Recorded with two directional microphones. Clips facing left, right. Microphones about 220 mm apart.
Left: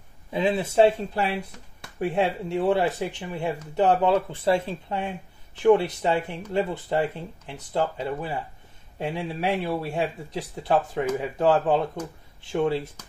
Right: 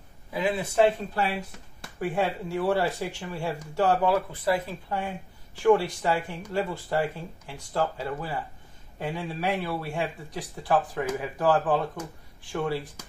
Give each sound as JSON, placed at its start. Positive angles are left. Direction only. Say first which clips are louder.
{"t": 0.3, "sound": "speech", "louder": "left 4 dB", "side_deg": 25}